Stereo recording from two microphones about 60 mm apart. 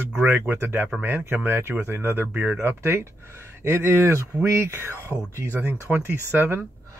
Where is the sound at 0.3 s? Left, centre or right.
Right.